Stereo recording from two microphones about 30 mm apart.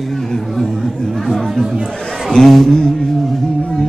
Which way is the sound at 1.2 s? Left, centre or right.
Centre.